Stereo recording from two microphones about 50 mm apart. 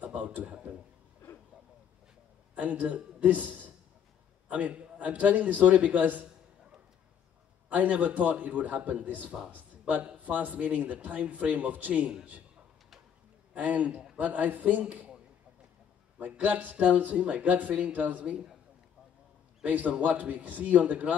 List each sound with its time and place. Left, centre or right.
0.0 s a sound: right
0.5 s speech: right
2.5 s a man's voice: right
7.7 s speech: right
13.6 s speech: right
16.2 s speech: right
19.6 s speech: right